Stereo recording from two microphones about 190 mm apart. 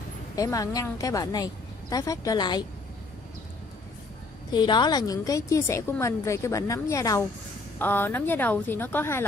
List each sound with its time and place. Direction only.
0.4 s a woman's voice: 20° left (ahead or behind)
4.5 s a woman's voice: 25° left (ahead or behind)